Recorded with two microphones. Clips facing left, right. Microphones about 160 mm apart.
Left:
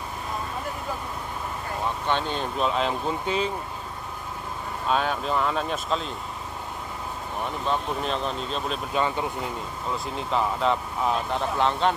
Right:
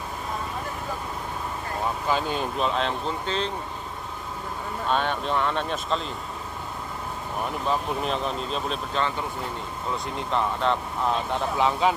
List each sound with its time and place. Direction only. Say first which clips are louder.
2.0 s speech: right 1 dB; 5° right (ahead or behind); by 3.5 s 10° left (ahead or behind)
4.8 s speech: left 1 dB; 5° left (ahead or behind)
7.6 s speech: even; 5° right (ahead or behind)
8.9 s speech: left 3 dB; 10° left (ahead or behind)